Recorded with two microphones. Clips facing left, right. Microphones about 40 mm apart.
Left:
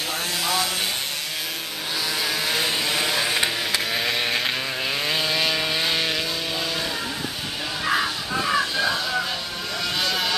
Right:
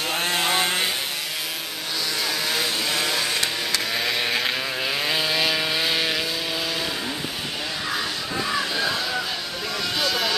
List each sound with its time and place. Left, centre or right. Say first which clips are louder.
0.1 s chainsaw: right 3 dB; right
2.2 s vehicle: left 1 dB; centre
7.8 s music: left 7 dB; centre
9.9 s vehicle: right 1 dB; centre